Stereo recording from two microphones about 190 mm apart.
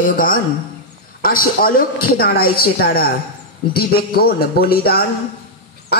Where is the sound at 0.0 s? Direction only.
45° left (ahead or behind).